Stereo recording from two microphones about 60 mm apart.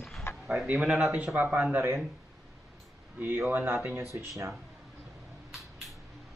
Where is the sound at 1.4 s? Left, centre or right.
Right.